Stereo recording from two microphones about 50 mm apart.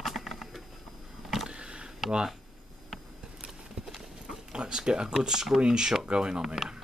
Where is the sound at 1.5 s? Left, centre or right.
Centre.